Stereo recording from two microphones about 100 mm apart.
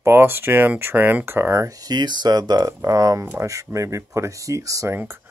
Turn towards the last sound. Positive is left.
turn(degrees=-25)  # may be behind; listen again after turning